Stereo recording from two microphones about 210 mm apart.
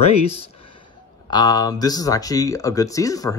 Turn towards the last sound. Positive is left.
turn(degrees=15)  # may be behind; listen again after turning